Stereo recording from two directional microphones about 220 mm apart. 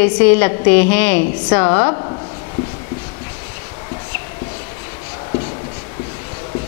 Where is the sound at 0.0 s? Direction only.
15° left (ahead or behind).